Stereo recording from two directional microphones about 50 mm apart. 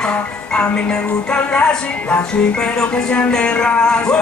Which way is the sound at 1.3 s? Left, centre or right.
Centre.